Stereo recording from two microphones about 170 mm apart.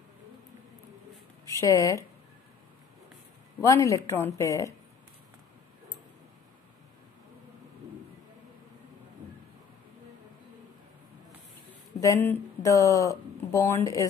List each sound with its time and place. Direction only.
1.4 s speech: 20° left (ahead or behind)
3.6 s a woman's voice: 20° left (ahead or behind)
12.0 s speech: 15° left (ahead or behind)